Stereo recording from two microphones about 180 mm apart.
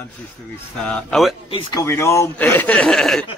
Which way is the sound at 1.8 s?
15° left (ahead or behind).